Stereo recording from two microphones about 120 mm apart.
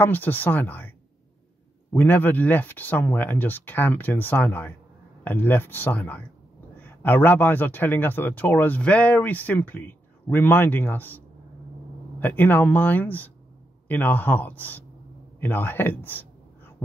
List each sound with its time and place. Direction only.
0.0 s speech: 15° left (ahead or behind)